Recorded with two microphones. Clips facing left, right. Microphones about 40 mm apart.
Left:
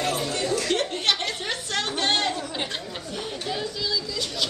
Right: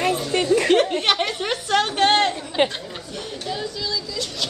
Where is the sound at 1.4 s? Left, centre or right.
Right.